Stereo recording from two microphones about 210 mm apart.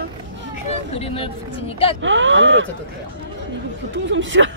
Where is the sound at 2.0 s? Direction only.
65° right (ahead or behind).